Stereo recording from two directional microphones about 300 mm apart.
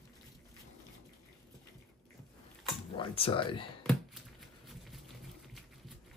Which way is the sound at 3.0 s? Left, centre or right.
Centre.